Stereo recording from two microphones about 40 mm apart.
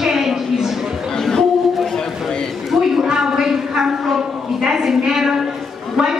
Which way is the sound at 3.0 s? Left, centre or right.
Centre.